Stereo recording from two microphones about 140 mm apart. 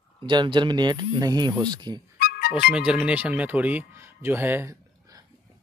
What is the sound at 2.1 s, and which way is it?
Music, 90° left.